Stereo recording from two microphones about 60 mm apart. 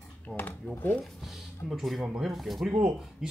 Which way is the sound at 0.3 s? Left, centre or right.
Centre.